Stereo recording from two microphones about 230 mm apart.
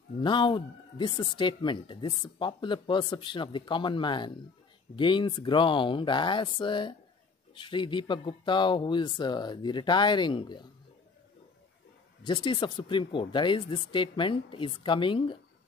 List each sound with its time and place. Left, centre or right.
0.2 s speech: left
12.2 s speech: centre